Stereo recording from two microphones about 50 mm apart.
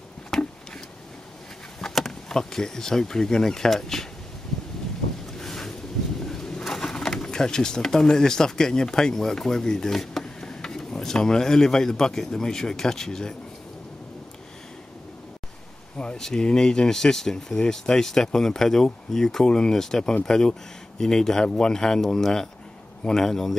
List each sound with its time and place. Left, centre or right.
0.3 s a sound: centre
1.8 s speech: centre
5.4 s a sound: centre
6.3 s bird: centre
6.6 s speech: centre
16.0 s speech: left